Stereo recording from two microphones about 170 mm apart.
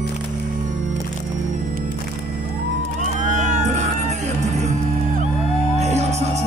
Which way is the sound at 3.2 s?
50° right (ahead or behind).